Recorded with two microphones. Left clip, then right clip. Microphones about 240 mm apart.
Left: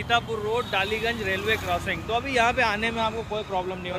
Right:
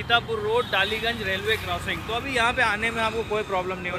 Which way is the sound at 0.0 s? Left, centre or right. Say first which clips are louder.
Right 2 dB; centre.